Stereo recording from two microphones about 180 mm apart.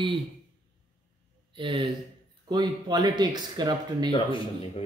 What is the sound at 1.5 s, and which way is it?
Speech, 25° right (ahead or behind).